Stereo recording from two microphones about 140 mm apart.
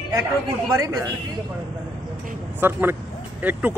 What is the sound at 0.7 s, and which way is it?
Speech, 20° right (ahead or behind).